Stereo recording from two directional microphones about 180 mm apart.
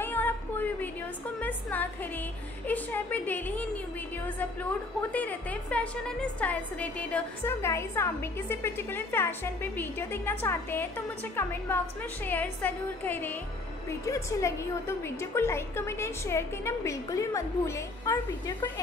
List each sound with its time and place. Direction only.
0.0 s music: 10° left (ahead or behind)
2.6 s a woman's voice: 10° left (ahead or behind)
5.1 s a woman's voice: 10° left (ahead or behind)